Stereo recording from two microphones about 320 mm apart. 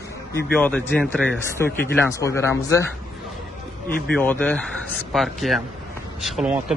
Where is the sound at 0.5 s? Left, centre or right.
Centre.